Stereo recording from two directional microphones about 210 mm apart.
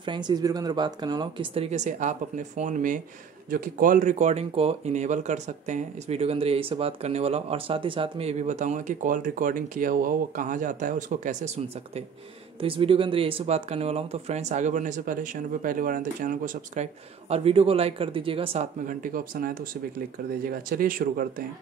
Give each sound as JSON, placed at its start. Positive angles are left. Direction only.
{"t": 0.0, "sound": "speech", "side_deg": -20}
{"t": 18.9, "sound": "speech", "side_deg": -40}